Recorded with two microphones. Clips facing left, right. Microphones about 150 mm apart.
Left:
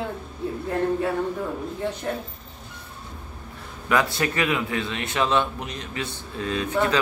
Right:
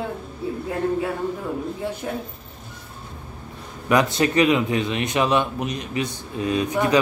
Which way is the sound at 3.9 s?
20° right (ahead or behind).